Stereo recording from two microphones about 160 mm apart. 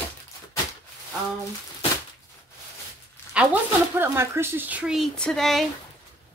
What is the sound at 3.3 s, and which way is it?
A woman's voice, 10° right (ahead or behind).